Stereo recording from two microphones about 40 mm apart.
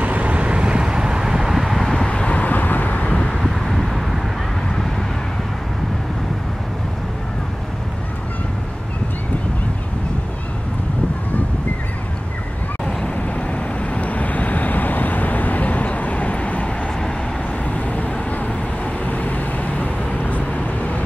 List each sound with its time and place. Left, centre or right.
0.0 s vehicle: right; by 1.9 s centre
2.0 s vehicle: left
3.2 s vehicle: centre
3.4 s vehicle: centre
13.0 s vehicle: left